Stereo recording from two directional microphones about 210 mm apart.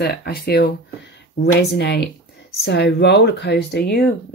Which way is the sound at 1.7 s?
55° left (ahead or behind).